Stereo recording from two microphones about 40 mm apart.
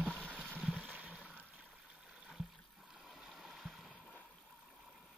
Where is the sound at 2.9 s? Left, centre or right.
Centre.